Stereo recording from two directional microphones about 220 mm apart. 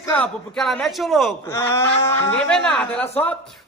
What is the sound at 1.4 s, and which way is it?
Speech, 10° left (ahead or behind).